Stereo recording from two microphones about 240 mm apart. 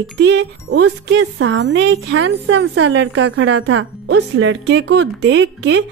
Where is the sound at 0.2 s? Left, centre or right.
Right.